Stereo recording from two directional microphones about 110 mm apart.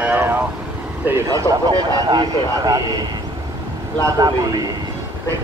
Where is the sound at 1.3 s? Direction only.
30° right (ahead or behind).